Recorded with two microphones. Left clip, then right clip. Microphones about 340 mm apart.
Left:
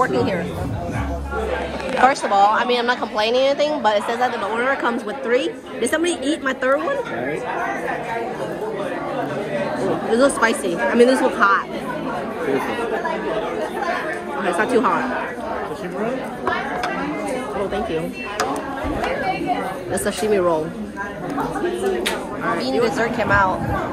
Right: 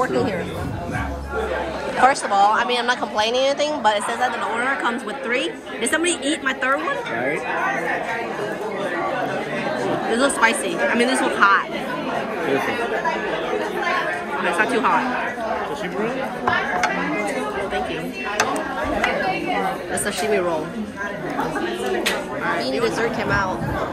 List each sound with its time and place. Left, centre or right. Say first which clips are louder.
0.0 s a woman's voice: left 2 dB; centre
2.0 s speech: left 1 dB; centre
3.3 s speech: left 4 dB; right
4.6 s a woman's voice: left 2 dB; centre
10.1 s a woman's voice: left 2 dB; centre
14.4 s a woman's voice: left 2 dB; centre
19.9 s a woman's voice: left 5 dB; centre
22.7 s a woman's voice: left 2 dB; centre